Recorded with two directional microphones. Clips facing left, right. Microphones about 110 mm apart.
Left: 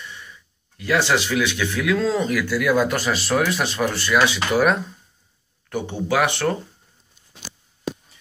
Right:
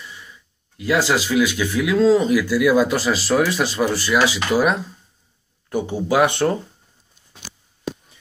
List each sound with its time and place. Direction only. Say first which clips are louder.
0.7 s speech: right 1 dB; 10° right (ahead or behind)